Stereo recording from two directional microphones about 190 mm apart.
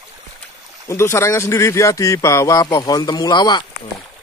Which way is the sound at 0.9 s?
15° left (ahead or behind).